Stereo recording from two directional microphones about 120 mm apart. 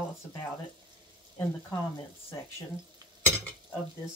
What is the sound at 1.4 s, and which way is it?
Speech, 25° left (ahead or behind).